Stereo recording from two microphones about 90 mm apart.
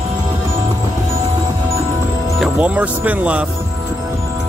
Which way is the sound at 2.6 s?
15° right (ahead or behind).